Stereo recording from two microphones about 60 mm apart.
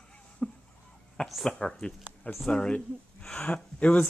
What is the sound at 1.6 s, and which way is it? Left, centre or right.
Speech, centre.